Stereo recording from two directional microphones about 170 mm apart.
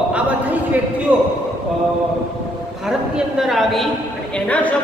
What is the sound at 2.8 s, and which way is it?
Speech, 5° right (ahead or behind).